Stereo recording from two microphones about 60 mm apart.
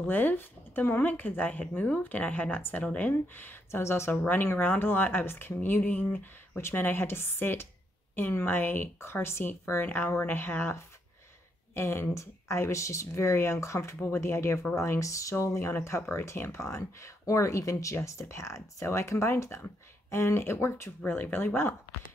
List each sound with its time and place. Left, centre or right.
0.0 s speech: left
3.8 s a woman's voice: left
13.9 s speech: left
15.3 s a woman's voice: left